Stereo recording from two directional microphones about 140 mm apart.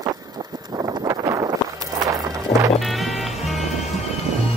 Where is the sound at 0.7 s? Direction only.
30° right (ahead or behind).